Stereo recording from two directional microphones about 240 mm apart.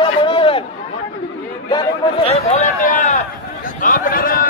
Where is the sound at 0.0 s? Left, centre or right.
Left.